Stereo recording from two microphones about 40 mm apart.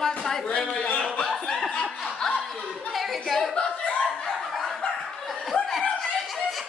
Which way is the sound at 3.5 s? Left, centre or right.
Left.